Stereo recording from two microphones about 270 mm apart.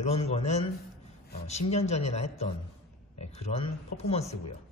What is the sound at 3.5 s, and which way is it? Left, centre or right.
Speech, left.